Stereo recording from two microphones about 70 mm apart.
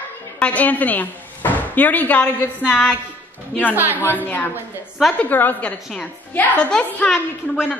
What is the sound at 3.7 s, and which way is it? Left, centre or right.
Speech, right.